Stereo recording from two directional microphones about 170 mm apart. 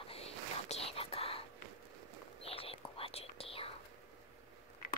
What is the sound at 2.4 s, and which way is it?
Whispering, 35° left (ahead or behind).